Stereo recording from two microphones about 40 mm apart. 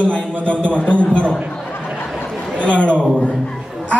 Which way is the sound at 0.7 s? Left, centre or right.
Left.